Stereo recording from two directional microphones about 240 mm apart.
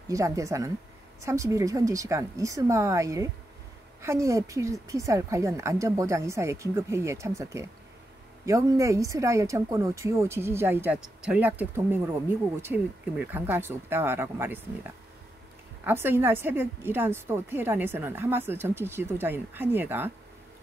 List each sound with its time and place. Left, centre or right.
0.1 s a woman's voice: centre